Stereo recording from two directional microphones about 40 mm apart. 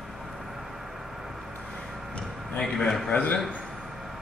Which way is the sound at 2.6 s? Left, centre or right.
Centre.